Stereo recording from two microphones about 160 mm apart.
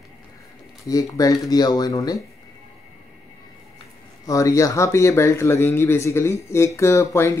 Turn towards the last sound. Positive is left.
turn(degrees=15)  # may be behind; listen again after turning